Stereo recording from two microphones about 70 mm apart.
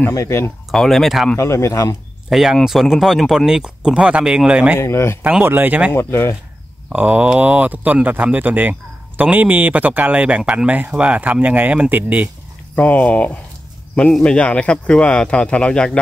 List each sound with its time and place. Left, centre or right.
0.7 s speech: centre
1.3 s speech: left
2.2 s speech: centre
4.7 s speech: left
5.4 s speech: right
5.9 s speech: left
6.9 s speech: centre
12.7 s speech: left